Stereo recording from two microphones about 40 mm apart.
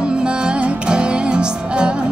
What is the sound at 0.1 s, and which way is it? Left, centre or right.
Music, right.